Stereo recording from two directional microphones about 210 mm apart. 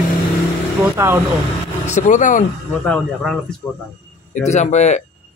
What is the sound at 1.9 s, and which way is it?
Speech, 35° left (ahead or behind).